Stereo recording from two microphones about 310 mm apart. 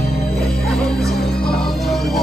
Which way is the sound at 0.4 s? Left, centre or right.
Centre.